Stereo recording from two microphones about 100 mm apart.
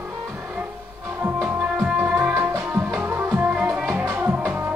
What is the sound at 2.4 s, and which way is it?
Music, 25° right (ahead or behind).